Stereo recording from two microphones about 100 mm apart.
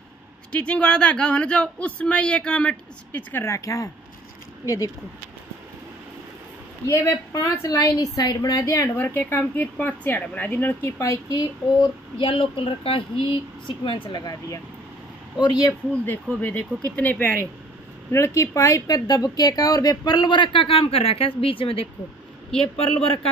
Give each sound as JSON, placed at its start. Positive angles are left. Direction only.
{"t": 0.5, "sound": "speech", "side_deg": 10}
{"t": 3.4, "sound": "speech", "side_deg": 30}
{"t": 6.9, "sound": "speech", "side_deg": 35}
{"t": 8.9, "sound": "a woman's voice", "side_deg": 20}
{"t": 12.3, "sound": "speech", "side_deg": 60}
{"t": 14.1, "sound": "speech", "side_deg": 40}
{"t": 16.1, "sound": "speech", "side_deg": 15}
{"t": 18.1, "sound": "speech", "side_deg": 30}
{"t": 22.5, "sound": "speech", "side_deg": 10}